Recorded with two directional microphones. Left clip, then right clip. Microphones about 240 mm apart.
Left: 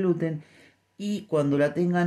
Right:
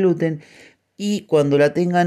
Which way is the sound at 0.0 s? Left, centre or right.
Right.